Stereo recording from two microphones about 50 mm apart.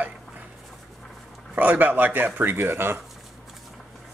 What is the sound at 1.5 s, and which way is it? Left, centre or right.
A man's voice, right.